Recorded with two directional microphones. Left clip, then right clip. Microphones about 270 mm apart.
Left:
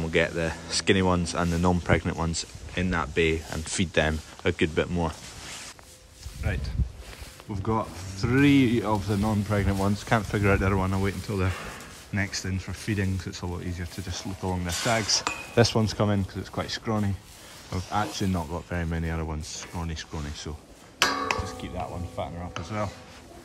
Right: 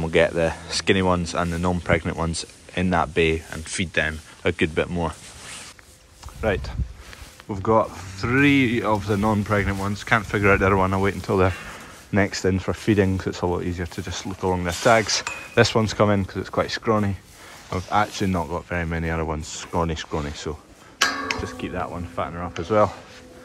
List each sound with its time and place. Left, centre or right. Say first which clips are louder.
0.0 s speech: right 6 dB; centre
6.4 s speech: right 12 dB; centre
21.6 s speech: right 6 dB; left
22.6 s speech: right 14 dB; centre